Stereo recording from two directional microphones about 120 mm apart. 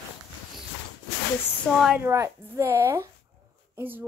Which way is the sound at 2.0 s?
25° right (ahead or behind).